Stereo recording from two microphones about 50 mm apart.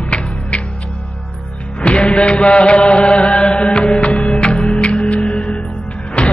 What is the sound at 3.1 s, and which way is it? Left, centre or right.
Chant, centre.